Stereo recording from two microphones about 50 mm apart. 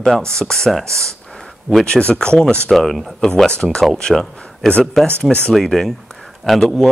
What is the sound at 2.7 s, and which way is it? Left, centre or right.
Speech, centre.